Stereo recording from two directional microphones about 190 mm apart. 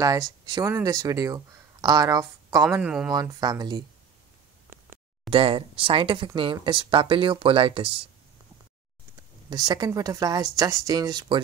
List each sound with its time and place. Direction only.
0.5 s speech: 15° right (ahead or behind)
2.8 s speech: 5° right (ahead or behind)
3.1 s speech: 20° right (ahead or behind)
5.3 s speech: 30° right (ahead or behind)
9.5 s speech: 20° right (ahead or behind)